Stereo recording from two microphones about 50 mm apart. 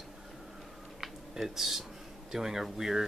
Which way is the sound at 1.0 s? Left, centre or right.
Centre.